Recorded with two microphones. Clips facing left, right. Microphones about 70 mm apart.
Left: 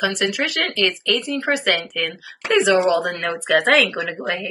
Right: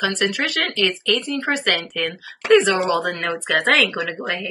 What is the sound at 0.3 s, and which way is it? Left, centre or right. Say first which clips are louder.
Speech: even; centre.